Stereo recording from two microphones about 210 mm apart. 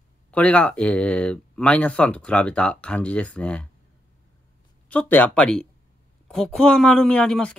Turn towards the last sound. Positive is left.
turn(degrees=5)  # may be behind; listen again after turning